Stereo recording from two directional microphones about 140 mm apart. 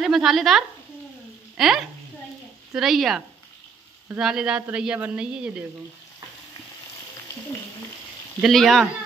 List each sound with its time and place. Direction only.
0.0 s speech: centre (ahead or behind)
8.4 s speech: centre (ahead or behind)